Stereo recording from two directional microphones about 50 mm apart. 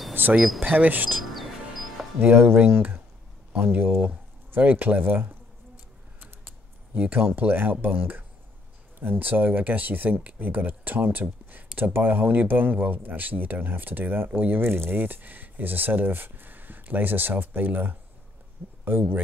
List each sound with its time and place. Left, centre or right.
0.1 s a sound: right
0.6 s speech: right
1.3 s music: centre
2.1 s speech: right
6.1 s a sound: right
7.8 s speech: right
9.2 s speech: right